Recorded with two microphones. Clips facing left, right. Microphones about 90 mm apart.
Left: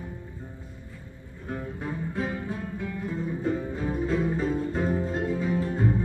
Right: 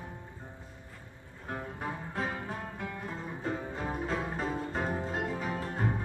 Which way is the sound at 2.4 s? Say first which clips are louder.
Left 5 dB; 45° right (ahead or behind).